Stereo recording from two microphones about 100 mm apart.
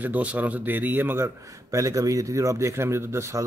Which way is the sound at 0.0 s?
15° right (ahead or behind).